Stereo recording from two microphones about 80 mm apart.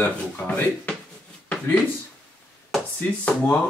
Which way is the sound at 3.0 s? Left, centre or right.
Centre.